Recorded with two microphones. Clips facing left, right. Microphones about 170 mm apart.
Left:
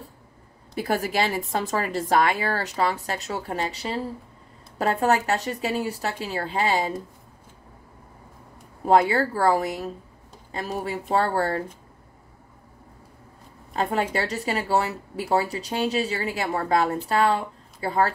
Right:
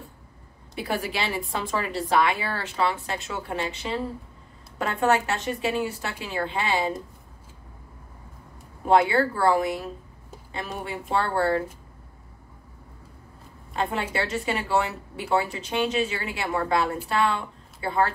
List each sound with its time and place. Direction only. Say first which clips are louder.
0.7 s a woman's voice: left 4 dB; 45° left (ahead or behind)
8.8 s speech: left 1 dB; 40° left (ahead or behind)
13.7 s speech: left 3 dB; 40° left (ahead or behind)